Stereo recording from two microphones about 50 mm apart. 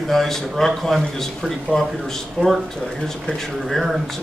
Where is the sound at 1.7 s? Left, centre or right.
Centre.